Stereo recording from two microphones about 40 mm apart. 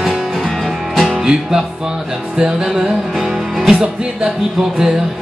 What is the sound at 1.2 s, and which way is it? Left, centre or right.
Music, centre.